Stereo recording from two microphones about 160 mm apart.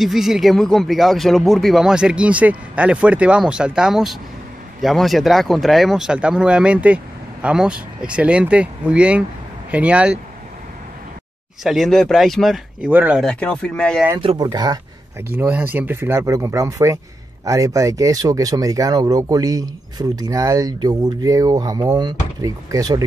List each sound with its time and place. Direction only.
0.0 s speech: centre (ahead or behind)
11.6 s speech: centre (ahead or behind)
12.9 s speech: 10° right (ahead or behind)
13.2 s speech: 5° left (ahead or behind)
14.4 s speech: 25° right (ahead or behind)
15.2 s speech: 10° right (ahead or behind)